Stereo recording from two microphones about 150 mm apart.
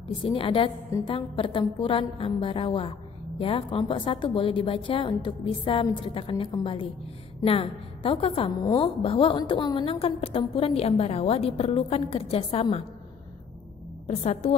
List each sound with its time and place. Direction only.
0.2 s a woman's voice: 35° left (ahead or behind)
8.5 s a woman's voice: 25° left (ahead or behind)
14.0 s a woman's voice: 45° left (ahead or behind)